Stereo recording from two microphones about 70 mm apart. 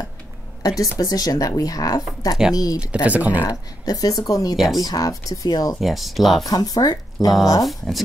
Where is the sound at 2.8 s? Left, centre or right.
Centre.